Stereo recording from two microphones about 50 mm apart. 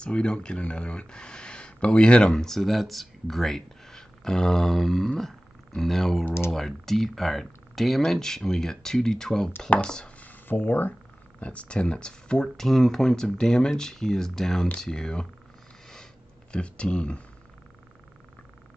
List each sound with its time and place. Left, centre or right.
0.0 s speech: centre
10.2 s speech: left
11.3 s speech: left
16.5 s speech: left